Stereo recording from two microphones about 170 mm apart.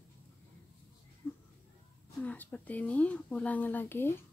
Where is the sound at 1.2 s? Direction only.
5° left (ahead or behind).